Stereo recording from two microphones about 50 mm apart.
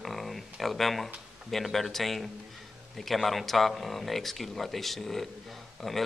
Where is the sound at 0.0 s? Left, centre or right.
Centre.